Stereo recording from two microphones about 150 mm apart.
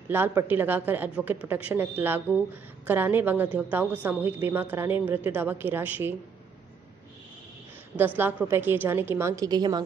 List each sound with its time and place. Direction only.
0.1 s a woman's voice: 15° right (ahead or behind)
8.2 s a woman's voice: 15° right (ahead or behind)